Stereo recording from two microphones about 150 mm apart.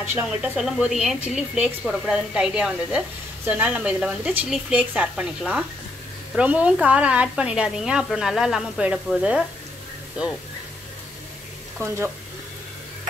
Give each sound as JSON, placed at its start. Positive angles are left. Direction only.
{"t": 0.0, "sound": "a woman's voice", "side_deg": -10}
{"t": 11.8, "sound": "speech", "side_deg": -20}